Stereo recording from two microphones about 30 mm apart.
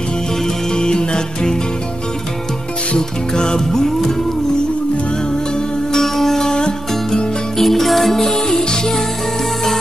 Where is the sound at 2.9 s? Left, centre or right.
Left.